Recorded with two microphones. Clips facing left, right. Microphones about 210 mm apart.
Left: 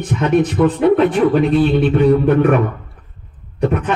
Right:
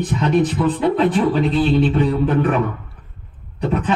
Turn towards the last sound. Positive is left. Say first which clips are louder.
# left 3 dB
turn(degrees=60)  # may be behind; listen again after turning